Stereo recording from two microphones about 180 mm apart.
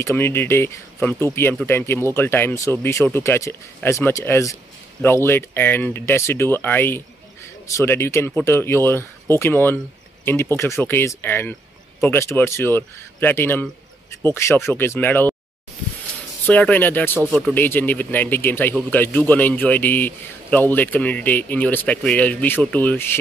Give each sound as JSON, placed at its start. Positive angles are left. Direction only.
{"t": 0.0, "sound": "a man's voice", "side_deg": 15}
{"t": 16.4, "sound": "a man's voice", "side_deg": 10}
{"t": 17.3, "sound": "speech", "side_deg": 0}
{"t": 17.6, "sound": "a man's voice", "side_deg": 10}